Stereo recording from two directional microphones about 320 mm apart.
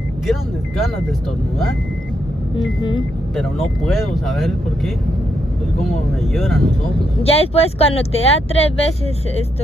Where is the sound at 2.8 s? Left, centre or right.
Centre.